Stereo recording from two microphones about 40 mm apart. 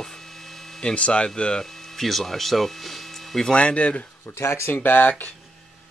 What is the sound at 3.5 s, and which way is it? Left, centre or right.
Speech, left.